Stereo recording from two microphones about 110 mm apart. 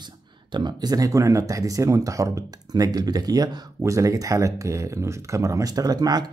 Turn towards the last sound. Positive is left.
turn(degrees=-35)  # may be behind; listen again after turning